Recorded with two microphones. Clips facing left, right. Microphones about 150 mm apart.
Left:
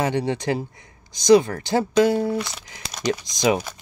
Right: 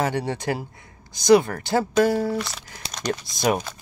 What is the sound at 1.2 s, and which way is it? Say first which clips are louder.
Speech: left 1 dB; 50° right (ahead or behind).